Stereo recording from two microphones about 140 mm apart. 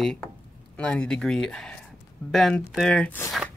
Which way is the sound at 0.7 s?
10° left (ahead or behind).